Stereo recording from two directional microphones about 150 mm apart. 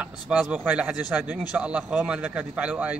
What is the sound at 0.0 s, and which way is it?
A man's voice, 10° right (ahead or behind).